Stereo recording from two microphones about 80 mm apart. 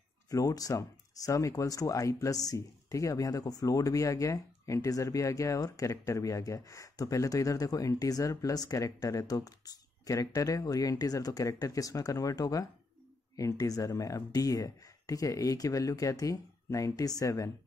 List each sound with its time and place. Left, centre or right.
0.3 s speech: left